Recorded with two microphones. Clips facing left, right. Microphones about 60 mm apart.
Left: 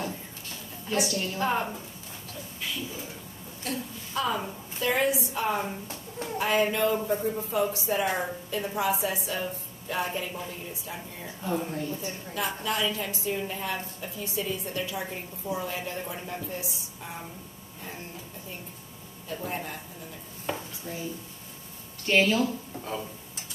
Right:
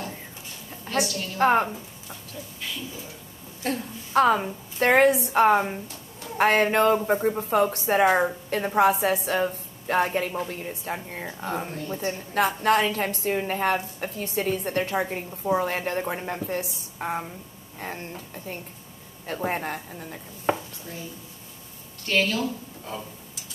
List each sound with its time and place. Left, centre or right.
1.0 s speech: centre
1.4 s a woman's voice: right
3.6 s a woman's voice: right
22.0 s speech: centre